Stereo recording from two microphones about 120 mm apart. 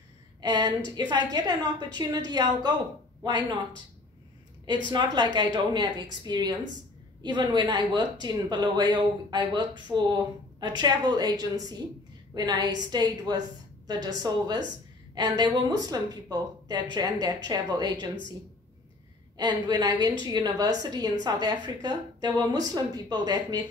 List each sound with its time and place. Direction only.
0.4 s speech: 35° right (ahead or behind)
4.8 s speech: 40° right (ahead or behind)
19.3 s speech: 35° right (ahead or behind)